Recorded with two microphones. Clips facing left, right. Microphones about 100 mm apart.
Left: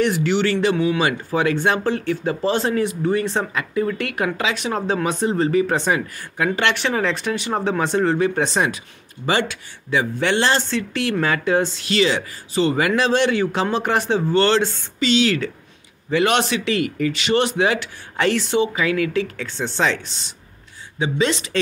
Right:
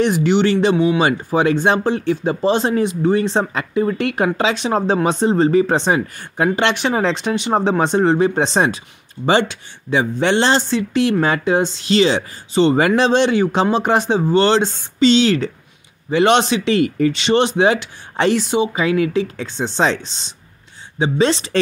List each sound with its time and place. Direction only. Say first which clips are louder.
0.0 s speech: right 4 dB; 20° right (ahead or behind)